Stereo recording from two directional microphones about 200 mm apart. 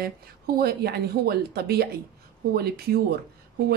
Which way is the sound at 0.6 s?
50° right (ahead or behind).